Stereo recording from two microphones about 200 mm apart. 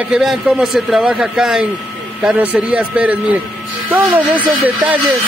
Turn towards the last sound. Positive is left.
turn(degrees=-10)  # may be behind; listen again after turning